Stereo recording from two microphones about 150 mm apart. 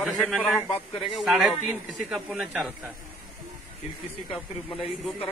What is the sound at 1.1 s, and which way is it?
A man's voice, 5° right (ahead or behind).